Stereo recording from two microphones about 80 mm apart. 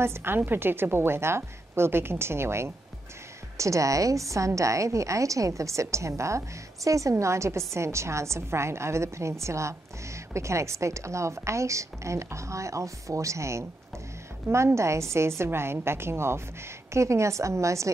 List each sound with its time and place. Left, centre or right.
0.0 s a woman's voice: right